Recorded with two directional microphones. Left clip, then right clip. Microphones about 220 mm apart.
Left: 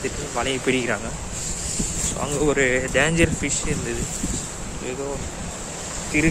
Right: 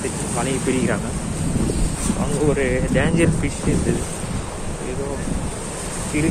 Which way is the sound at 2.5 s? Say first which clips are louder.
Left 2 dB; 35° left (ahead or behind).